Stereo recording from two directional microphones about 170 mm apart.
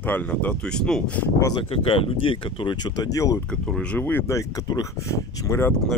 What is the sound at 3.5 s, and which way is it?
Speech, 5° left (ahead or behind).